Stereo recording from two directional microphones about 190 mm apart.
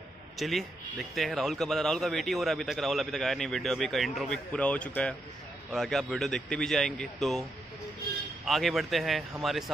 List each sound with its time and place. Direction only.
0.4 s a man's voice: centre (ahead or behind)
8.5 s a man's voice: centre (ahead or behind)